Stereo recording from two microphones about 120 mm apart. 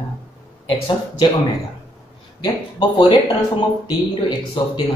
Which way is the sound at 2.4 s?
45° left (ahead or behind).